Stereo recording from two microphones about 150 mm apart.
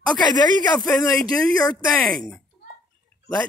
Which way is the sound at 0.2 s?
30° left (ahead or behind).